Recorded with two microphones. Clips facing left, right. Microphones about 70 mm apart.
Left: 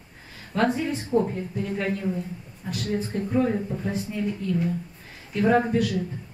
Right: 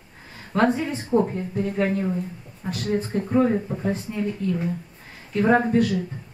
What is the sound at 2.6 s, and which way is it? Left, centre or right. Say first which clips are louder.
Speech: right 2 dB; right.